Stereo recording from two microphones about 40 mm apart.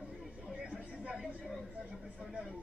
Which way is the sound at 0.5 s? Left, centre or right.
Right.